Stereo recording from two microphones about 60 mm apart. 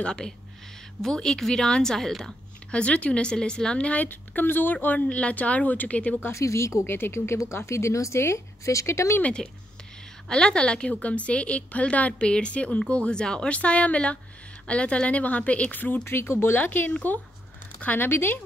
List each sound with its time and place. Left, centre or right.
0.0 s speech: centre
2.7 s a woman's voice: centre
6.3 s speech: left
9.2 s a woman's voice: centre; by 18.4 s left